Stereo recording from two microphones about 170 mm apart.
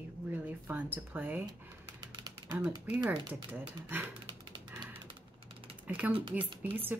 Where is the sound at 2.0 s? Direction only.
25° right (ahead or behind).